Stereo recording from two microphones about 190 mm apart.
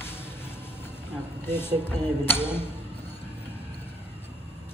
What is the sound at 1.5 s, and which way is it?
Speech, 10° left (ahead or behind).